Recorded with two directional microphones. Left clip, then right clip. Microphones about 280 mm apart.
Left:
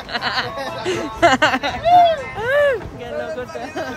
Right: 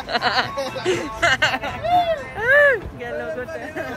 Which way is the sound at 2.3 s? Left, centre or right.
Centre.